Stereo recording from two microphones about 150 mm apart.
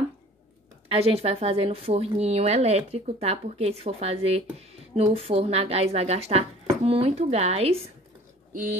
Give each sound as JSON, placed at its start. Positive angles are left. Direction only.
{"t": 0.8, "sound": "a woman's voice", "side_deg": -40}